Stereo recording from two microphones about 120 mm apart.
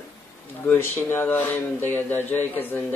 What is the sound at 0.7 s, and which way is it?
Speech, 20° left (ahead or behind).